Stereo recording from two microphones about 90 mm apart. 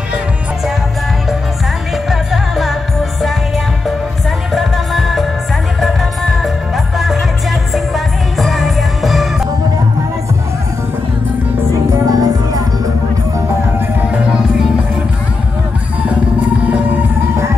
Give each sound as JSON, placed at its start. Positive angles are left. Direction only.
{"t": 2.0, "sound": "music", "side_deg": -5}
{"t": 4.5, "sound": "music", "side_deg": 0}
{"t": 7.7, "sound": "music", "side_deg": 0}
{"t": 11.9, "sound": "music", "side_deg": -45}